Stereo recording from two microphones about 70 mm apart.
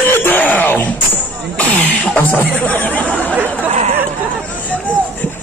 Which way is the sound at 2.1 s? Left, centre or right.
Left.